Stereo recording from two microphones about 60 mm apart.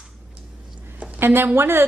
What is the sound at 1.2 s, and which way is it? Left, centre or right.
Speech, right.